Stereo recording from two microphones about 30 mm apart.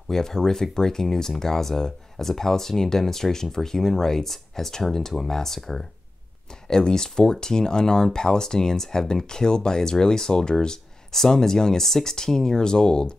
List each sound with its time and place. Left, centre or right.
0.1 s speech: centre
6.7 s speech: left